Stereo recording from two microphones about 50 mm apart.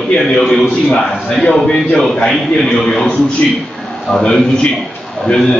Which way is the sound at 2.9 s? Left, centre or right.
Centre.